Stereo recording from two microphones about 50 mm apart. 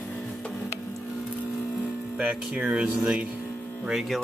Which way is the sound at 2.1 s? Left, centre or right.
Right.